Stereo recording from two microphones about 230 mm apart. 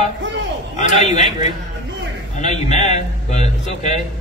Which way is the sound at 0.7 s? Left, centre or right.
Left.